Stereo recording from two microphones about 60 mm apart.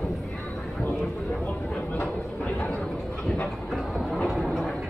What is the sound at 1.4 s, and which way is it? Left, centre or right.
Vehicle, left.